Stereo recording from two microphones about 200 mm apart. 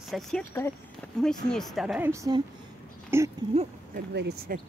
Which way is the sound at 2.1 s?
20° right (ahead or behind).